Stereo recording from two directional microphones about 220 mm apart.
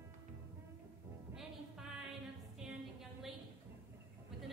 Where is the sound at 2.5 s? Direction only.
Centre (ahead or behind).